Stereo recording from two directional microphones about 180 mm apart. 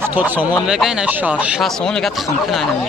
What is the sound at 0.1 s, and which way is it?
Speech, 10° right (ahead or behind).